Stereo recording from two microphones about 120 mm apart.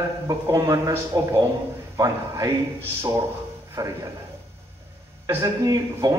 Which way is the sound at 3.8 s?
25° right (ahead or behind).